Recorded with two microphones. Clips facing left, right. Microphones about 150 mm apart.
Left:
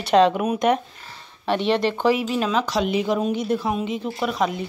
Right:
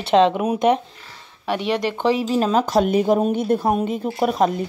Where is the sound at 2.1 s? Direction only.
35° right (ahead or behind).